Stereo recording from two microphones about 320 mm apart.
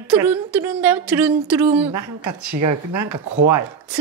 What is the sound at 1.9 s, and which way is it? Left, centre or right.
Speech, right.